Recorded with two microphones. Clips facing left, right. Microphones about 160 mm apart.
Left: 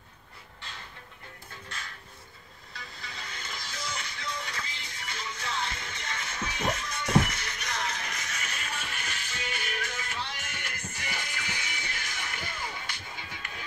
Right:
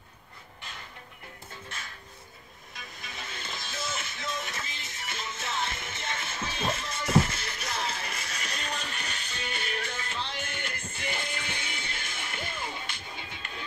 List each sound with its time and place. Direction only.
2.7 s music: 20° right (ahead or behind)